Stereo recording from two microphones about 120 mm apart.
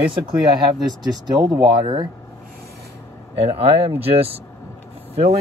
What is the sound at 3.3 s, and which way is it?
Speech, 55° right (ahead or behind).